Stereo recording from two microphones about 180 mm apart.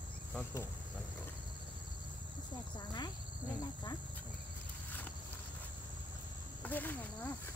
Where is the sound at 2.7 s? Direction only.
25° left (ahead or behind).